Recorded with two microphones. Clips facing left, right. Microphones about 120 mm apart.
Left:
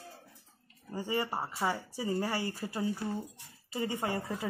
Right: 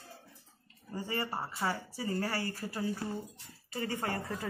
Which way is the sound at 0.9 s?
15° left (ahead or behind).